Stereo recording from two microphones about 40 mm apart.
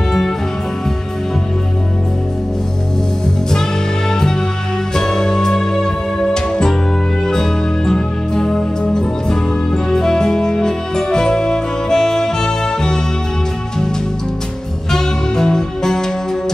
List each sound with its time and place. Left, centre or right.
4.1 s music: centre
14.9 s music: centre